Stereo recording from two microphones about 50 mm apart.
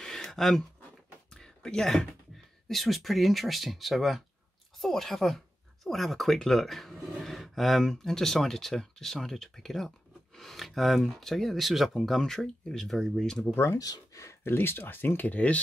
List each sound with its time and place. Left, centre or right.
0.0 s a sound: centre
1.3 s speech: centre
12.2 s speech: centre
13.0 s speech: centre
13.6 s speech: left